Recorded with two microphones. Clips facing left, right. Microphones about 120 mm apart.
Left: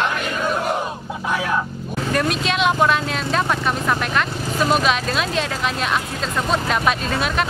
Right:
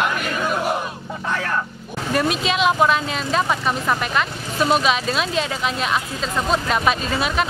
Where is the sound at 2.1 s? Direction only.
Centre (ahead or behind).